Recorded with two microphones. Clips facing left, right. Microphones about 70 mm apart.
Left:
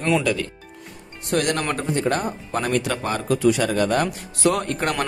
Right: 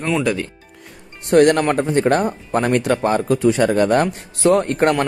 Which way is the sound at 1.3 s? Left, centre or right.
Right.